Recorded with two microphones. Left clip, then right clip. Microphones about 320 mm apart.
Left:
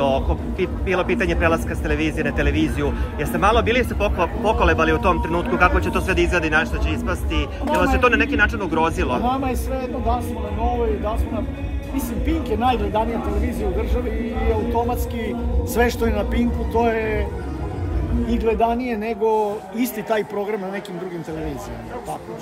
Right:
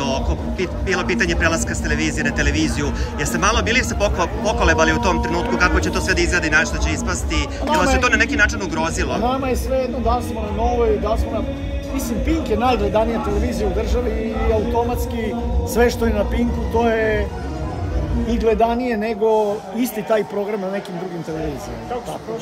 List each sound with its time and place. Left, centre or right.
0.0 s a man's voice: centre
12.3 s a man's voice: centre
14.5 s a man's voice: centre
18.3 s a man's voice: centre